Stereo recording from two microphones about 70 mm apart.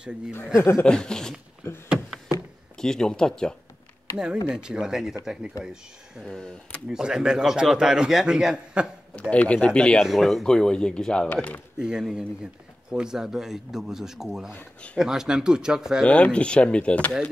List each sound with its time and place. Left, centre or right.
0.6 s speech: left
0.8 s speech: centre
1.9 s a sound: centre
2.8 s speech: centre
4.5 s a man's voice: centre
9.3 s speech: centre
10.0 s speech: centre
11.8 s a man's voice: centre
16.1 s speech: centre